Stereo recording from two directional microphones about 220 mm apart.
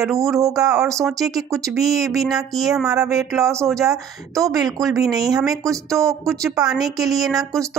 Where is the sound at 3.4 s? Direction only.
15° right (ahead or behind).